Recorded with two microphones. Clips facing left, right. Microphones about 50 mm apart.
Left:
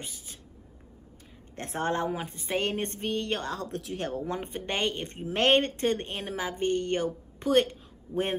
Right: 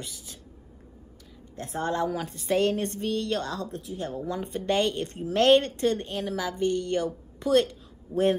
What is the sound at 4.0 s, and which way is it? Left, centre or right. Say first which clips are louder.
A woman's voice: right 1 dB; left.